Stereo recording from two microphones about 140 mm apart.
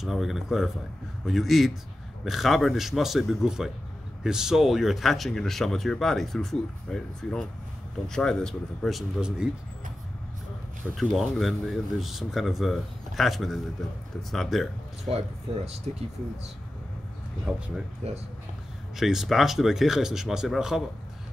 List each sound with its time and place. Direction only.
0.0 s speech: centre (ahead or behind)
10.8 s speech: 5° left (ahead or behind)
15.1 s speech: 50° right (ahead or behind)
17.5 s speech: 5° right (ahead or behind)
18.0 s speech: 50° right (ahead or behind)
18.9 s speech: centre (ahead or behind)